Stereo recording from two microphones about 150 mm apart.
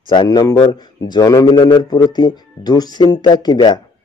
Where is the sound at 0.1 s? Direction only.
30° left (ahead or behind).